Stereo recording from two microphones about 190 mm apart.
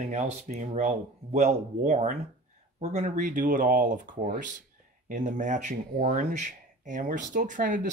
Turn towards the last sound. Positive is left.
turn(degrees=-45)  # may be behind; listen again after turning